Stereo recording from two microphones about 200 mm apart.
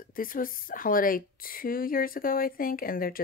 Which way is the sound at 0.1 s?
45° left (ahead or behind).